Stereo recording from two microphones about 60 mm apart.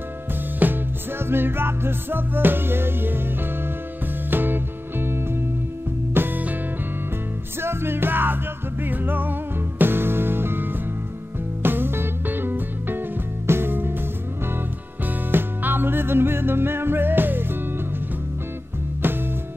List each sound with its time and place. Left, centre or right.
0.6 s music: right
1.2 s music: right
7.6 s music: right
15.3 s music: right
19.0 s music: right